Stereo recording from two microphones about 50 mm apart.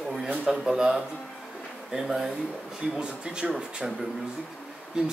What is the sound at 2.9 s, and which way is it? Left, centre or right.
Speech, centre.